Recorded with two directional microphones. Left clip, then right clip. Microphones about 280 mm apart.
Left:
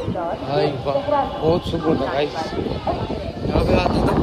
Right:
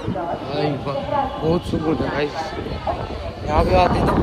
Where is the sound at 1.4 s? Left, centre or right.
Left.